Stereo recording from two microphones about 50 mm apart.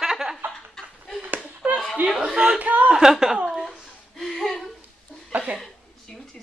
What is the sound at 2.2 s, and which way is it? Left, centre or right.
Speech, centre.